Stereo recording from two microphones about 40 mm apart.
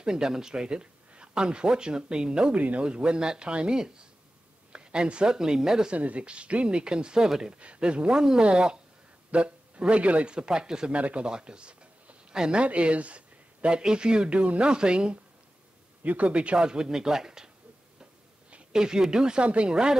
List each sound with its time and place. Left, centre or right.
0.0 s speech: centre
2.5 s speech: right
2.8 s speech: right
5.9 s speech: right; by 7.5 s centre
7.5 s speech: right
8.2 s speech: centre; by 10.3 s right
10.3 s speech: right
11.0 s speech: right
11.2 s a sound: right
12.6 s speech: right
16.0 s speech: right
16.5 s speech: centre
18.7 s speech: centre